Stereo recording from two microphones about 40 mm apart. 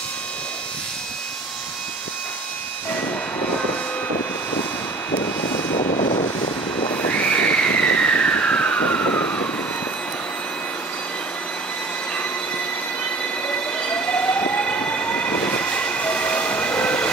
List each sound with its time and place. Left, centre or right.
7.1 s vehicle: left
13.5 s train: left